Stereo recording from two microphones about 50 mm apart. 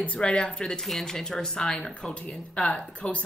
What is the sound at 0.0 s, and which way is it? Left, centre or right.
Speech, left.